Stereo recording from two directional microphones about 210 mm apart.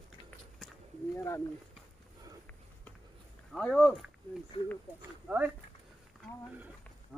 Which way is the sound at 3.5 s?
Centre (ahead or behind).